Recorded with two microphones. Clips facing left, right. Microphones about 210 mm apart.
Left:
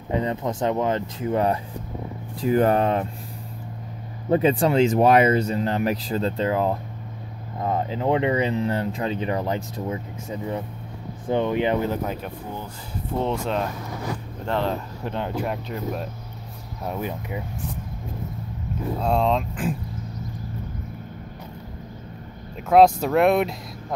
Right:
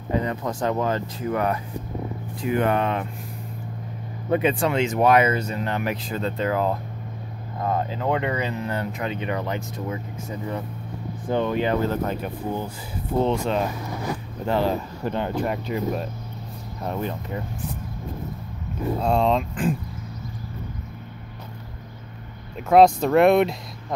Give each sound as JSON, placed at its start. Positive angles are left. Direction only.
{"t": 0.1, "sound": "speech", "side_deg": 25}
{"t": 4.3, "sound": "speech", "side_deg": 35}
{"t": 11.2, "sound": "speech", "side_deg": 20}
{"t": 13.2, "sound": "speech", "side_deg": 0}
{"t": 18.9, "sound": "speech", "side_deg": 0}
{"t": 22.7, "sound": "speech", "side_deg": 5}